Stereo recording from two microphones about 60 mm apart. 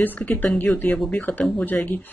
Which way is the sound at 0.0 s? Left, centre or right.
Left.